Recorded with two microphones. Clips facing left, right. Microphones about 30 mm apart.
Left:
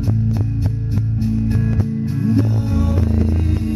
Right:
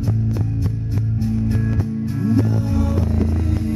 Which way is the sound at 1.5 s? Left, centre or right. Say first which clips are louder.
Left 2 dB; centre.